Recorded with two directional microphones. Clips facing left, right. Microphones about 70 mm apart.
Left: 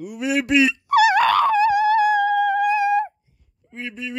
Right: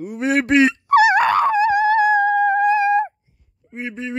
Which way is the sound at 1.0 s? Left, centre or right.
Right.